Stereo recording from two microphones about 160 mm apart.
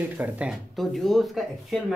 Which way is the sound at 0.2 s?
5° right (ahead or behind).